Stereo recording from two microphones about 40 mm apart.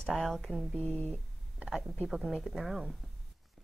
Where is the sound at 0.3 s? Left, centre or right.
Centre.